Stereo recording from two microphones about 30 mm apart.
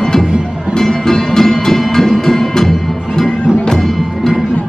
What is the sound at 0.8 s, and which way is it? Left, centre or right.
Music, centre.